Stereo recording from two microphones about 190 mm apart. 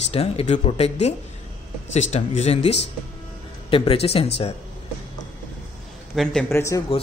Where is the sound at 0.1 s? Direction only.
30° left (ahead or behind).